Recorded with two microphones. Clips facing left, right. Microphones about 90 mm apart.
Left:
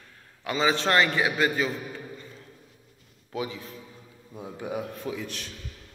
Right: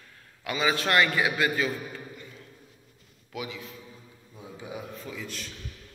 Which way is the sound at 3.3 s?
35° left (ahead or behind).